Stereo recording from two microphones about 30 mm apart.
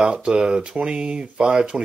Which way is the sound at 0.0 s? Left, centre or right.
Right.